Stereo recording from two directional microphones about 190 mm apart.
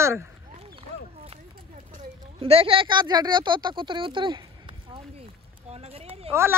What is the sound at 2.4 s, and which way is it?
Speech, 30° right (ahead or behind).